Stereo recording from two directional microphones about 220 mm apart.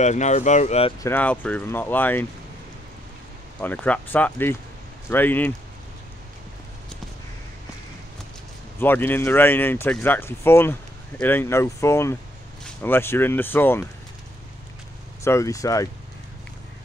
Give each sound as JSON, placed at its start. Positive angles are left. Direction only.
{"t": 0.0, "sound": "speech", "side_deg": 30}
{"t": 1.0, "sound": "speech", "side_deg": 10}
{"t": 3.6, "sound": "speech", "side_deg": 5}
{"t": 8.7, "sound": "speech", "side_deg": 10}
{"t": 15.2, "sound": "speech", "side_deg": 15}